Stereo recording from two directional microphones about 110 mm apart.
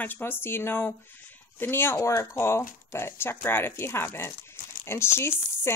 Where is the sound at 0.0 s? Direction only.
20° left (ahead or behind).